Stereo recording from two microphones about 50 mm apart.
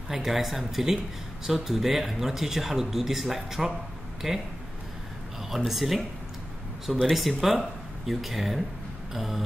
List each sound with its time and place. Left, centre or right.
0.1 s speech: centre
5.7 s speech: centre